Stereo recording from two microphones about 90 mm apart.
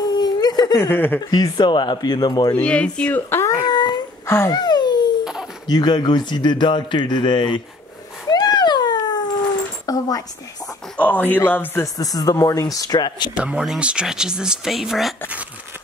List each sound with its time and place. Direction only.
0.0 s a sound: 50° left (ahead or behind)
0.7 s speech: 25° left (ahead or behind)
1.3 s speech: 50° left (ahead or behind)
2.5 s speech: 15° left (ahead or behind)
3.6 s dog: 50° left (ahead or behind)
4.5 s a sound: 50° left (ahead or behind)
5.2 s a sound: 5° right (ahead or behind)
5.7 s a man's voice: 50° left (ahead or behind)
8.3 s cat: 50° left (ahead or behind)
9.8 s a sound: 45° left (ahead or behind)
11.0 s speech: 20° left (ahead or behind)
11.8 s speech: 45° left (ahead or behind)
13.4 s speech: 10° right (ahead or behind)